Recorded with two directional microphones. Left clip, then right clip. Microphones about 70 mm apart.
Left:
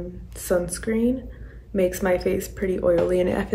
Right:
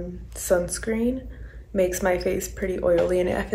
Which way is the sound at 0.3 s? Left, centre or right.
Centre.